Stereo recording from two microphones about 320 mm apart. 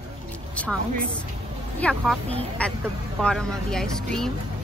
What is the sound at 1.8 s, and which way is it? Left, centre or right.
Speech, centre.